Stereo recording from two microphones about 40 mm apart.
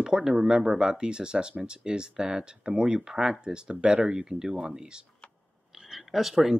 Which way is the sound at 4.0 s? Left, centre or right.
Centre.